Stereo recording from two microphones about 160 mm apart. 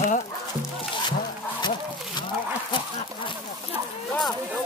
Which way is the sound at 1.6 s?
30° left (ahead or behind).